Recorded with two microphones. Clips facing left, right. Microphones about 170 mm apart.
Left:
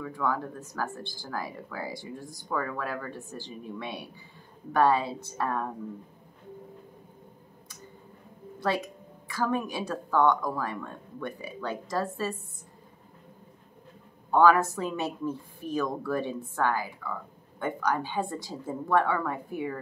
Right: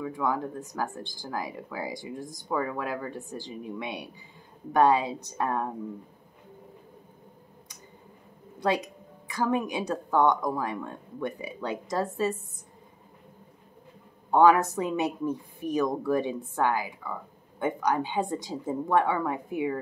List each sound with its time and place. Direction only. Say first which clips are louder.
0.0 s a woman's voice: right 2 dB; 15° right (ahead or behind)
8.5 s a woman's voice: right 2 dB; 15° right (ahead or behind)
14.3 s a woman's voice: right 1 dB; 20° right (ahead or behind)